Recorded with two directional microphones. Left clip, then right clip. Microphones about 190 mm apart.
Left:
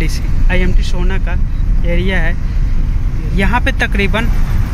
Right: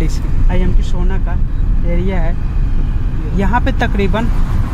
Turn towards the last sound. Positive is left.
turn(degrees=-5)  # may be behind; listen again after turning